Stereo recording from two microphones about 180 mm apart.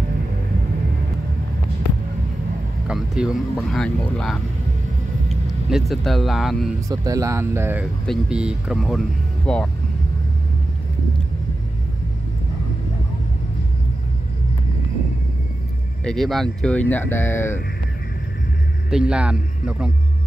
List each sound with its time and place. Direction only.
2.9 s speech: 5° right (ahead or behind)
5.3 s speech: centre (ahead or behind)
6.9 s speech: 20° right (ahead or behind); by 9.6 s 5° left (ahead or behind)
16.0 s speech: 5° left (ahead or behind)
18.9 s speech: 5° right (ahead or behind)